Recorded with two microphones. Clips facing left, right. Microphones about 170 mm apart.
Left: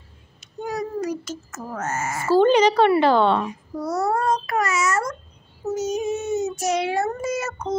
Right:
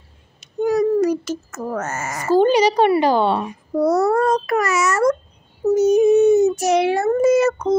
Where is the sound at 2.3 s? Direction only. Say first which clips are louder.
Right 1 dB; 10° right (ahead or behind).